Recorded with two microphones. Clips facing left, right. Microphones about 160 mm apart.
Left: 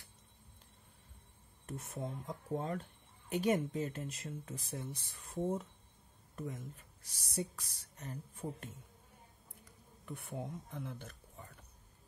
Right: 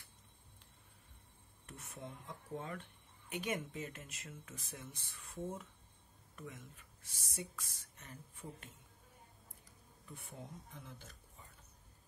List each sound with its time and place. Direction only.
1.7 s speech: 40° left (ahead or behind)
10.0 s speech: 65° left (ahead or behind)